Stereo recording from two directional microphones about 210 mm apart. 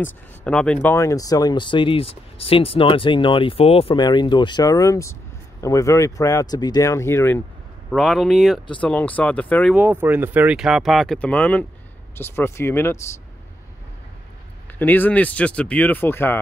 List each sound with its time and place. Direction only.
0.0 s speech: 5° left (ahead or behind)
7.9 s speech: centre (ahead or behind)
9.8 s speech: 10° right (ahead or behind); by 13.0 s 10° left (ahead or behind)
14.8 s speech: 10° left (ahead or behind)